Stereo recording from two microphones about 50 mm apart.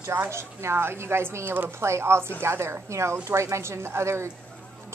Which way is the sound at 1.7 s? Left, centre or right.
Right.